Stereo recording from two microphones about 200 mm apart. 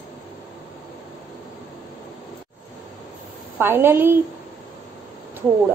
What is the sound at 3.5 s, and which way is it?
Speech, 10° right (ahead or behind).